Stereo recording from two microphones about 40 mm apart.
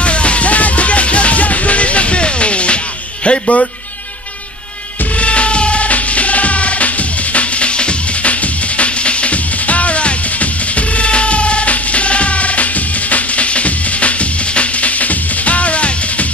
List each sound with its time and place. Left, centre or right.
0.0 s music: left
3.3 s a sound: left
5.2 s music: left